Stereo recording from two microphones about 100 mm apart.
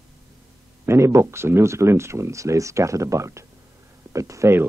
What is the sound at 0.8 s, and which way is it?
Speech, 25° right (ahead or behind).